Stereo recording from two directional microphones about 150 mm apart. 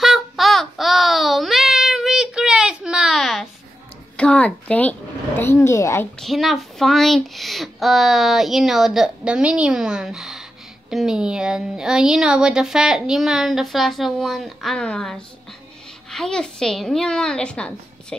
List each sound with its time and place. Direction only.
0.0 s child singing: centre (ahead or behind)
4.2 s a woman's voice: 5° left (ahead or behind)
6.1 s a woman's voice: centre (ahead or behind)